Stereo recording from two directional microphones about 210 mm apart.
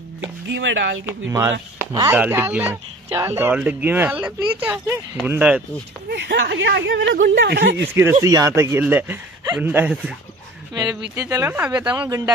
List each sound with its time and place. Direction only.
0.5 s speech: 60° right (ahead or behind)
1.0 s speech: 15° right (ahead or behind)
6.0 s speech: 55° right (ahead or behind)
7.9 s speech: 10° right (ahead or behind)
10.7 s speech: 20° right (ahead or behind)
11.9 s speech: 20° right (ahead or behind)